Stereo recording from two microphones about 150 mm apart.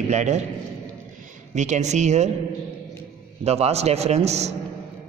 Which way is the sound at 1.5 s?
50° right (ahead or behind).